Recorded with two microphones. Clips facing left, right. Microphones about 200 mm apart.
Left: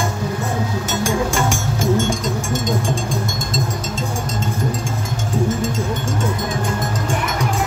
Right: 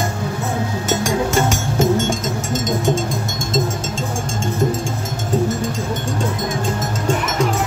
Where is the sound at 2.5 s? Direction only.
20° right (ahead or behind).